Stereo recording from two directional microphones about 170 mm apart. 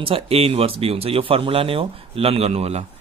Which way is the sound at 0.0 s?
35° right (ahead or behind).